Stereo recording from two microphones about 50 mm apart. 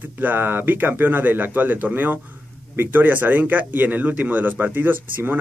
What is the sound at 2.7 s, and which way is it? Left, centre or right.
Speech, right.